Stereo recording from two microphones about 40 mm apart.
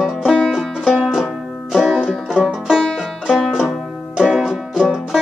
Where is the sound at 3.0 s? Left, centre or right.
Centre.